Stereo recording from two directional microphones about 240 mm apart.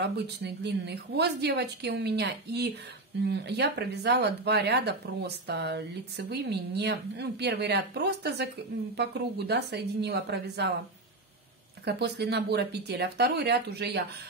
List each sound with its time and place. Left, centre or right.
0.0 s speech: right
11.8 s speech: right